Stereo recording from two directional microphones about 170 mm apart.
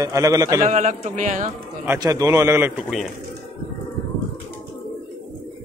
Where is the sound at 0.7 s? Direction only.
45° right (ahead or behind).